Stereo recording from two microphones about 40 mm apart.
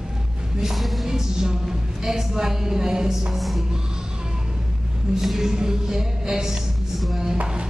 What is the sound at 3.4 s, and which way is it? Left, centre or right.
Music, centre.